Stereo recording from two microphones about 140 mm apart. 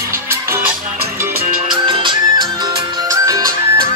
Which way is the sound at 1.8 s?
35° right (ahead or behind).